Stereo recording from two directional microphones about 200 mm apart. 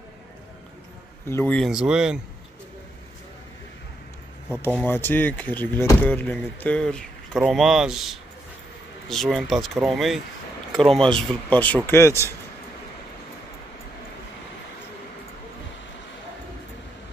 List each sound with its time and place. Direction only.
1.3 s speech: 10° left (ahead or behind)
4.8 s speech: 10° left (ahead or behind)